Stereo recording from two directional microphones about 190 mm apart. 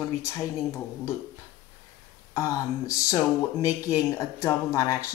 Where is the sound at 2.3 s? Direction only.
15° left (ahead or behind).